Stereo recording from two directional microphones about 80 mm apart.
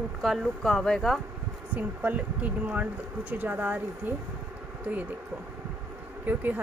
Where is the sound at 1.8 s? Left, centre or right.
Centre.